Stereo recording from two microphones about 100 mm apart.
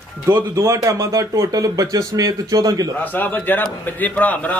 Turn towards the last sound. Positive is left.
turn(degrees=15)  # may be behind; listen again after turning